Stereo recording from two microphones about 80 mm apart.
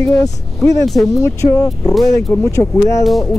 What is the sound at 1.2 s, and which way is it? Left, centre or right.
Speech, left.